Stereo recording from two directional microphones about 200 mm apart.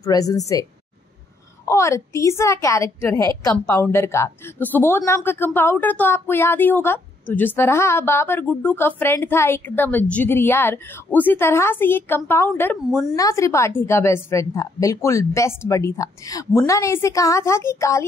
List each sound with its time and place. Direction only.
0.0 s a woman's voice: 20° left (ahead or behind)
1.7 s a woman's voice: 15° left (ahead or behind)